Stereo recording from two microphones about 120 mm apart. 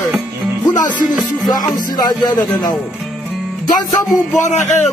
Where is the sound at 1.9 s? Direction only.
35° left (ahead or behind).